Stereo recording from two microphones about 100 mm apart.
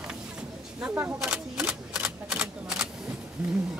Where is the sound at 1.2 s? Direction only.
10° right (ahead or behind).